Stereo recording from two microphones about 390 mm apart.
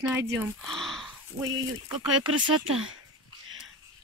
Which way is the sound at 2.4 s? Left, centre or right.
Right.